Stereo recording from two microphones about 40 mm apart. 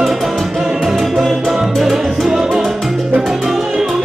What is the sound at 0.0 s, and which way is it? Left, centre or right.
Music, centre.